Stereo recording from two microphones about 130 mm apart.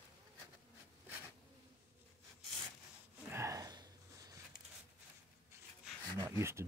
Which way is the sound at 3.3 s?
20° right (ahead or behind).